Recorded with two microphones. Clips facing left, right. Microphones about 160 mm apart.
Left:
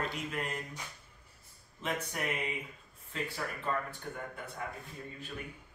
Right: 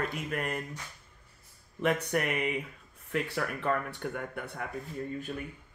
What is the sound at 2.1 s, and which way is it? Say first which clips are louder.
Speech: right 7 dB; 65° right (ahead or behind).